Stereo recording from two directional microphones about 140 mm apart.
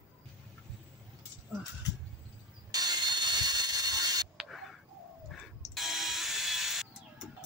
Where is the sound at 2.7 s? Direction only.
30° right (ahead or behind).